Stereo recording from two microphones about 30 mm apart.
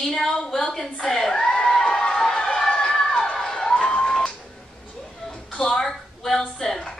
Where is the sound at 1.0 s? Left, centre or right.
Centre.